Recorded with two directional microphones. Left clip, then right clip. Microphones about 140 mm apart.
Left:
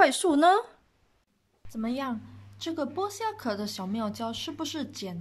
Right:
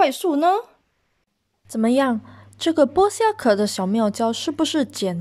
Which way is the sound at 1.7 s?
55° right (ahead or behind).